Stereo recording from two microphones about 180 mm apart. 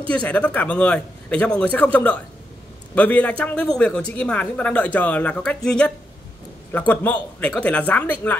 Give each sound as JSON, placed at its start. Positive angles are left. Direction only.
{"t": 0.1, "sound": "a man's voice", "side_deg": 10}